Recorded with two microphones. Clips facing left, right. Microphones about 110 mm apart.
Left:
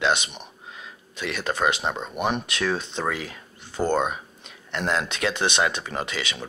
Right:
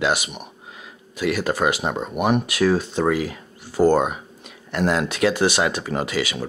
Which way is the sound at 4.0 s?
15° right (ahead or behind).